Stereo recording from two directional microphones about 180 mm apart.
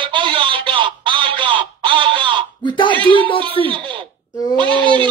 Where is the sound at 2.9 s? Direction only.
30° right (ahead or behind).